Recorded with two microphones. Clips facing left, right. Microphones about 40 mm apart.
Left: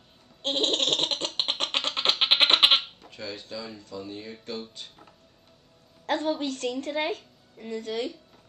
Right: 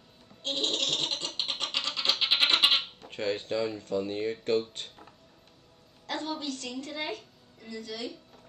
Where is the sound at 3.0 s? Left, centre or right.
Right.